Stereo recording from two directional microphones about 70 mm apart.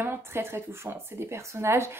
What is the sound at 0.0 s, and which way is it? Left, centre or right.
Speech, right.